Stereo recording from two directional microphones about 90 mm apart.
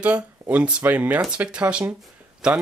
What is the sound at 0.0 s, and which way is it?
Speech, 15° right (ahead or behind).